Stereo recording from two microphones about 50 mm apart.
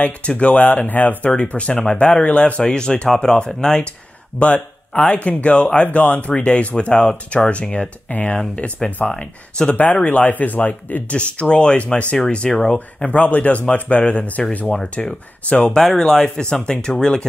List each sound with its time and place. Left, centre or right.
0.0 s speech: left
1.3 s speech: left
11.1 s speech: left
15.7 s speech: centre